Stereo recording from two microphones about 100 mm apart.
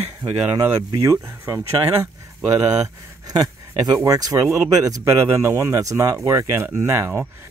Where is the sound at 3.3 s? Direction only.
40° right (ahead or behind).